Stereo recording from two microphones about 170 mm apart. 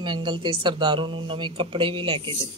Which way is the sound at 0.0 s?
30° right (ahead or behind).